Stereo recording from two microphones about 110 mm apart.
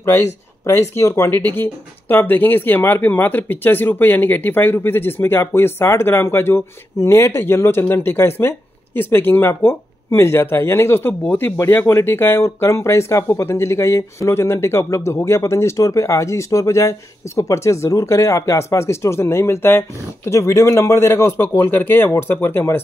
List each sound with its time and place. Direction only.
0.0 s speech: 25° left (ahead or behind)